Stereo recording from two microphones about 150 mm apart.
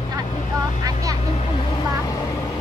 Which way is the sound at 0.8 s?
25° right (ahead or behind).